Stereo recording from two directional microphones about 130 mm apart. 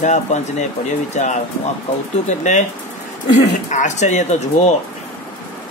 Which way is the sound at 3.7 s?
65° left (ahead or behind).